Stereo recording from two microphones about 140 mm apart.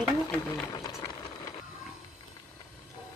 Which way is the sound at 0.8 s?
20° left (ahead or behind).